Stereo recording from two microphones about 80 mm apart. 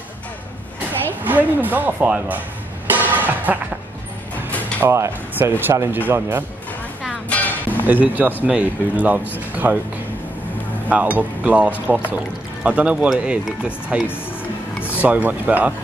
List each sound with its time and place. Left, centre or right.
1.2 s speech: right
2.9 s music: right
4.7 s speech: right
7.2 s music: centre
7.8 s speech: right
10.9 s speech: centre
14.8 s a sound: left
15.0 s speech: centre